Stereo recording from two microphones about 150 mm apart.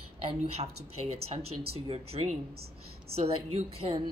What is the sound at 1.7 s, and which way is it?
A woman's voice, 40° right (ahead or behind).